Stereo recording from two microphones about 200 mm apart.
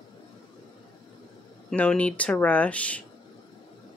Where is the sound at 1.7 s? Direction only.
5° left (ahead or behind).